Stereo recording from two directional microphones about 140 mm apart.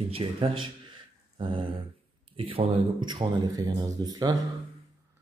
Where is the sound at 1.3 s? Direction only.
35° right (ahead or behind).